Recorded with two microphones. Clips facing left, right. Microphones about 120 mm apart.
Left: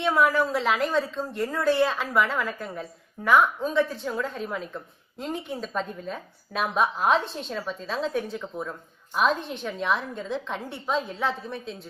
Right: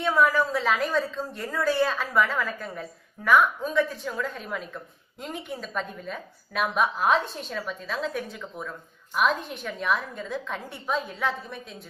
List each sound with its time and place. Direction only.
0.0 s a woman's voice: 20° left (ahead or behind)